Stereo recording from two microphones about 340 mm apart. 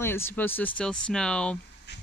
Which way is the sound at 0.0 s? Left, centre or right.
Centre.